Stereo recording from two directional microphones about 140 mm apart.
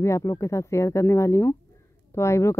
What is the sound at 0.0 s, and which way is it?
Speech, 20° left (ahead or behind).